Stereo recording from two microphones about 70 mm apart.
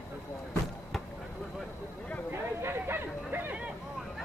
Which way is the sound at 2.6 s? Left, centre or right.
Right.